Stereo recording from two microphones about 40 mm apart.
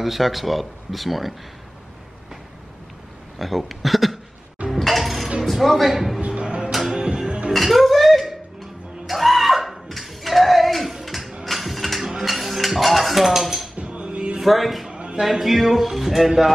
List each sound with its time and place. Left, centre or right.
0.0 s speech: centre
3.3 s speech: centre
4.6 s a sound: centre
5.4 s music: centre
7.0 s music: right
7.5 s a sound: centre
11.4 s mechanisms: centre
12.3 s music: centre
13.7 s dishes: right
14.4 s speech: centre
14.9 s a sound: right
15.2 s speech: centre